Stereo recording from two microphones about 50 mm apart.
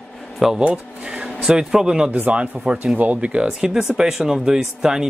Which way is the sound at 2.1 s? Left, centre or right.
Right.